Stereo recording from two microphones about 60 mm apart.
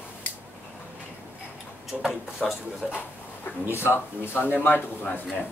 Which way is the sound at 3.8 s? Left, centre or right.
Left.